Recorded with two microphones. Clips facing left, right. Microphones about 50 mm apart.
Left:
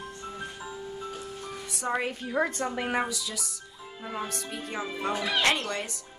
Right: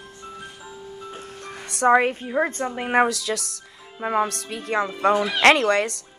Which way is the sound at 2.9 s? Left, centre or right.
Right.